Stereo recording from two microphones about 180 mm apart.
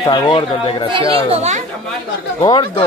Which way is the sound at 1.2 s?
35° right (ahead or behind).